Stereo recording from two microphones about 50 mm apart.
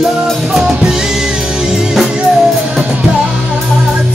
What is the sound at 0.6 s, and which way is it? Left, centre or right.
Drum kit, centre.